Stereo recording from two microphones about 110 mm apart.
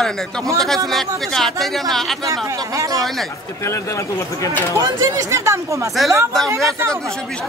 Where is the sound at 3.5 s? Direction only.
25° left (ahead or behind).